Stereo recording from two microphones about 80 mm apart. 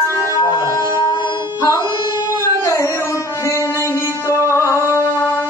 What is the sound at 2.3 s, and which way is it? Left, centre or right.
Music, left.